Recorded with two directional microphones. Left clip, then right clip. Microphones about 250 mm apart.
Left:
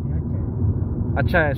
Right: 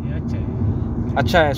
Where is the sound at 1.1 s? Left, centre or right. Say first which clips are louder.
Right 4 dB; centre.